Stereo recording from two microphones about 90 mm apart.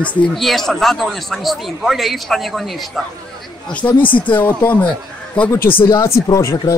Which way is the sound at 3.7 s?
15° left (ahead or behind).